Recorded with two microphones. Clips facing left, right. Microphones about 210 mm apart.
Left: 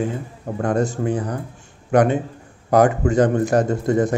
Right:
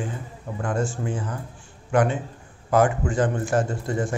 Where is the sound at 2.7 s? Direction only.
40° left (ahead or behind).